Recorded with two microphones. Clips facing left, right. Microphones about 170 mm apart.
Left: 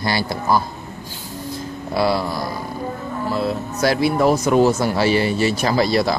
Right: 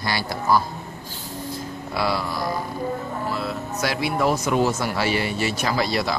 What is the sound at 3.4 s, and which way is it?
Speech, 30° left (ahead or behind).